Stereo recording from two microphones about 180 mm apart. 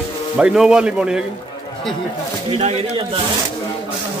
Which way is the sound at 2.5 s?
35° right (ahead or behind).